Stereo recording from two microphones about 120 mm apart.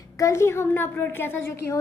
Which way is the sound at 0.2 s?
25° left (ahead or behind).